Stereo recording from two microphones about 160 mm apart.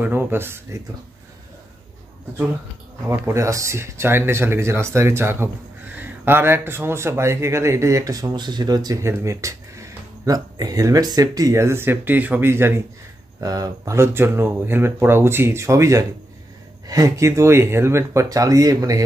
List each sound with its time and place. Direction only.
0.0 s speech: 15° right (ahead or behind)
3.1 s speech: 20° right (ahead or behind)